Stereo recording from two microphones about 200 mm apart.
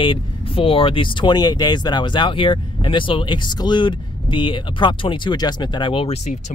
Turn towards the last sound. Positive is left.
turn(degrees=35)  # may be behind; listen again after turning